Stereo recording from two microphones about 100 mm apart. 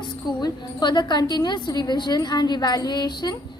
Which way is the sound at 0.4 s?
45° left (ahead or behind).